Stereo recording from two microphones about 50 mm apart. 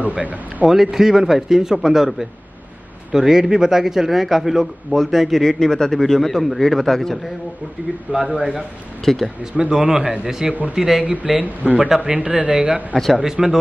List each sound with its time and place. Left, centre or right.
0.0 s speech: right
0.7 s speech: centre
3.1 s speech: centre
8.5 s speech: centre
9.4 s speech: centre
11.1 s speech: right
12.9 s speech: centre
13.2 s speech: centre